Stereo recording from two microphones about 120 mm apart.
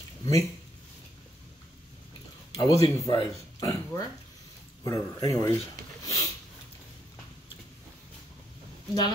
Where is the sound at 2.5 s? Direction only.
30° left (ahead or behind).